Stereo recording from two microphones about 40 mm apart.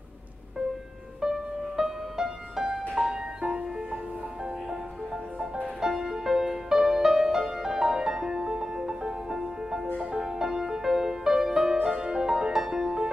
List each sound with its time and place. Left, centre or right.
1.2 s music: centre